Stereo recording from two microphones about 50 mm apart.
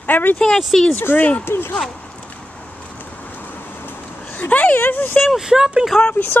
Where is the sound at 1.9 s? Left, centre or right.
Left.